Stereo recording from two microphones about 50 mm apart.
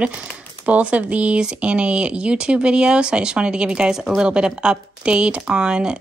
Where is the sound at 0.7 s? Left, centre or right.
Right.